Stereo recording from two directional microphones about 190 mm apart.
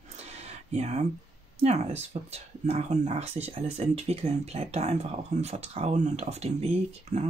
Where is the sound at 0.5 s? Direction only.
35° right (ahead or behind).